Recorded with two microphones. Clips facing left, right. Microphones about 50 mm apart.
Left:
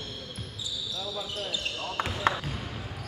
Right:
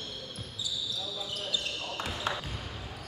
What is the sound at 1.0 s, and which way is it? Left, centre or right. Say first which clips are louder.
Basketball bounce: left 3 dB; left.